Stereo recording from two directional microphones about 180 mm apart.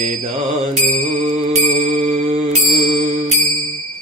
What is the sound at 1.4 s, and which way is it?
Music, 35° right (ahead or behind).